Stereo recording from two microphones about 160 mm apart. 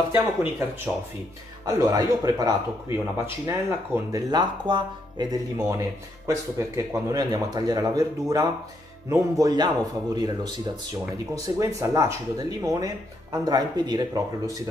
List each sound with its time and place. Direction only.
0.1 s speech: 10° right (ahead or behind)
1.7 s speech: 20° right (ahead or behind)